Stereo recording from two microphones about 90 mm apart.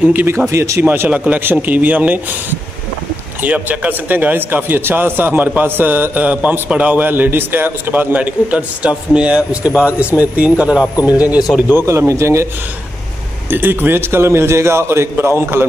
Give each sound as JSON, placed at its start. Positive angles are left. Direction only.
{"t": 0.0, "sound": "speech", "side_deg": -20}
{"t": 0.5, "sound": "speech", "side_deg": -30}
{"t": 3.4, "sound": "speech", "side_deg": -15}
{"t": 11.7, "sound": "speech", "side_deg": -30}
{"t": 13.5, "sound": "a man's voice", "side_deg": -25}